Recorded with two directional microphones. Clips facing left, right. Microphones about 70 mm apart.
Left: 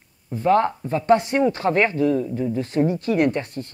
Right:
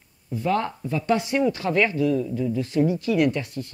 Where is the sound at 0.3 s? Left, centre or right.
Left.